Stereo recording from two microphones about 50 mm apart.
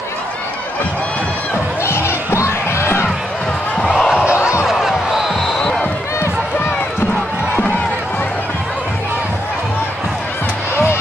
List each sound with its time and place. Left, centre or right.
1.8 s music: left
4.2 s a sound: centre
4.6 s basketball bounce: centre
5.6 s basketball bounce: centre